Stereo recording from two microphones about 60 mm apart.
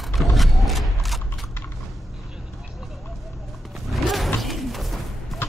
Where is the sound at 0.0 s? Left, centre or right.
Centre.